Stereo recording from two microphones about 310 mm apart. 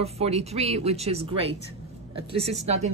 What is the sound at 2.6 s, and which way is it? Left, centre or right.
Speech, right.